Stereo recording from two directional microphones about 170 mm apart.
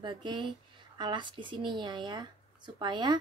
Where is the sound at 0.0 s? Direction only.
25° right (ahead or behind).